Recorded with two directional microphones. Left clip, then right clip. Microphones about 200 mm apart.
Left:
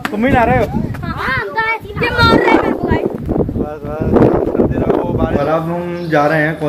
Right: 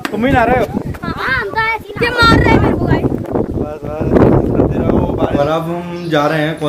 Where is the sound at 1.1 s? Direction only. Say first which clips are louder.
Right 1 dB; 40° right (ahead or behind).